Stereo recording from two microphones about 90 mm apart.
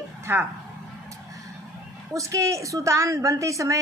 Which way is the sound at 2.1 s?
35° right (ahead or behind).